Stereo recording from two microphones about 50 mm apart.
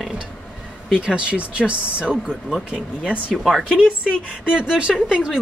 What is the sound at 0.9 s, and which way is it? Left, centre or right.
Speech, centre.